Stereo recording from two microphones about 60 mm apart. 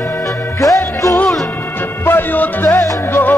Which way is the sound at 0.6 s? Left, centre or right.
Left.